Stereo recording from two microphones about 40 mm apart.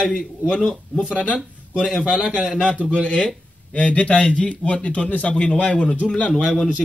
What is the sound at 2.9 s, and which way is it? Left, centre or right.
A man's voice, left.